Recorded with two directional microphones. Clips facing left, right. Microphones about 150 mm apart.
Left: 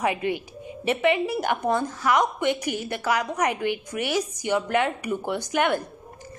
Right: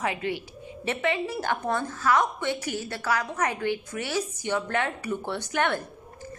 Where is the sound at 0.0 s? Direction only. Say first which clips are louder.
Left 4 dB; 15° left (ahead or behind).